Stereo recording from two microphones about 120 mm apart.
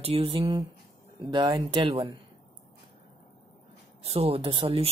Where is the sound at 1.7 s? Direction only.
50° right (ahead or behind).